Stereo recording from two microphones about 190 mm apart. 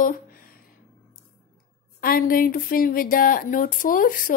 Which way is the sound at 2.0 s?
50° left (ahead or behind).